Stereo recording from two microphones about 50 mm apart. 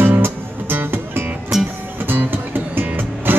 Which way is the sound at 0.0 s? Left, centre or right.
Right.